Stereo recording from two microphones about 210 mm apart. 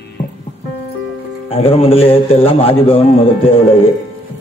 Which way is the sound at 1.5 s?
25° left (ahead or behind).